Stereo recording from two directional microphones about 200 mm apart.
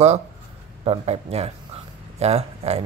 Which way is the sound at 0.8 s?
30° right (ahead or behind).